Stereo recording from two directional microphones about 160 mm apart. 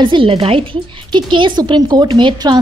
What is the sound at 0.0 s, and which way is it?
A woman's voice, 30° right (ahead or behind).